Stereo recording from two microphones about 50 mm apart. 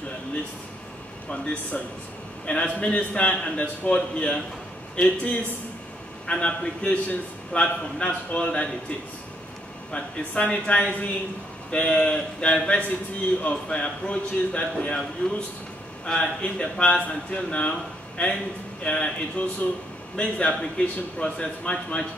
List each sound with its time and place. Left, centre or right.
1.3 s speech: left
9.9 s speech: left